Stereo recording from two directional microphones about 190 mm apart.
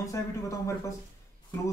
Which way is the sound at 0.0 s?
15° left (ahead or behind).